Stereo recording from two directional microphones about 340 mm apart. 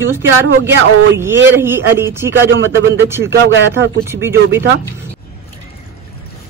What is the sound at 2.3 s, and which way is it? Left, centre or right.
Speech, right.